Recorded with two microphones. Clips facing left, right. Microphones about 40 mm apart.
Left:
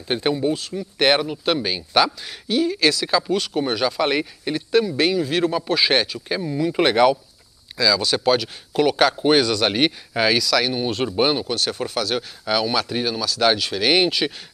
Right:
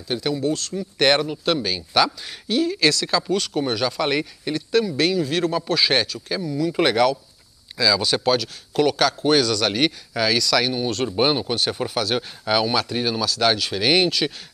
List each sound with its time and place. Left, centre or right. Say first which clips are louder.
0.1 s speech: left 3 dB; left
0.4 s speech: left 1 dB; centre
6.7 s speech: left 2 dB; centre
7.7 s speech: even; centre
10.4 s speech: even; centre
10.8 s speech: left 1 dB; centre
11.1 s speech: even; centre